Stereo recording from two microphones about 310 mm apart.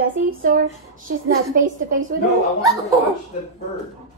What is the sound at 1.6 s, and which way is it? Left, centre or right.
Speech, right.